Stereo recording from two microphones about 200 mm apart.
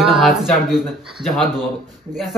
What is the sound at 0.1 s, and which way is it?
Speech, centre (ahead or behind).